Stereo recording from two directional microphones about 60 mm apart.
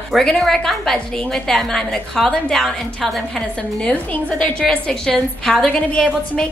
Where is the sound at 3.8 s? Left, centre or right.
Left.